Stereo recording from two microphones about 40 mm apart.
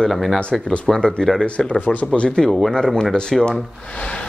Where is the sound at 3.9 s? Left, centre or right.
Left.